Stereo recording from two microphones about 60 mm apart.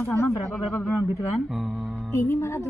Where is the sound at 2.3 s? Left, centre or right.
Left.